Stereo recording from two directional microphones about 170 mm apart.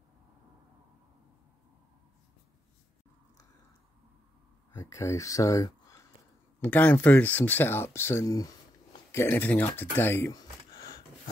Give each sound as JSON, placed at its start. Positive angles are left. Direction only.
{"t": 4.7, "sound": "speech", "side_deg": 15}